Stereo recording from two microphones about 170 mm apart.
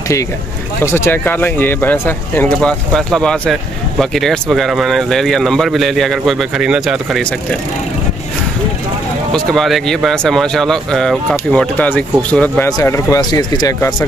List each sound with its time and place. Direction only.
0.8 s speech: 15° left (ahead or behind); by 7.2 s 5° right (ahead or behind)
9.3 s speech: centre (ahead or behind); by 13.9 s 20° left (ahead or behind)